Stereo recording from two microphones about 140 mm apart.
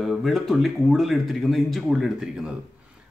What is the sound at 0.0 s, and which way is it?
A man's voice, centre (ahead or behind).